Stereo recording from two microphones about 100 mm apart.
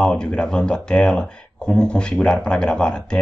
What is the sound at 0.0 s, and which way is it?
Speech, 10° left (ahead or behind).